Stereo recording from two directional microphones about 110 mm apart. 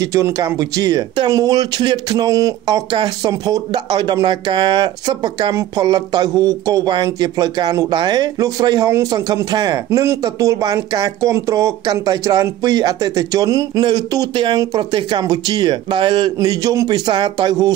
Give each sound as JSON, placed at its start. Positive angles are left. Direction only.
{"t": 0.0, "sound": "speech", "side_deg": -30}
{"t": 13.8, "sound": "speech", "side_deg": -45}
{"t": 16.3, "sound": "speech", "side_deg": -35}